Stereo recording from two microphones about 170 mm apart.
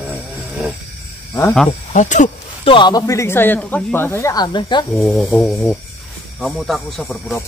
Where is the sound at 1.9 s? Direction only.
45° left (ahead or behind).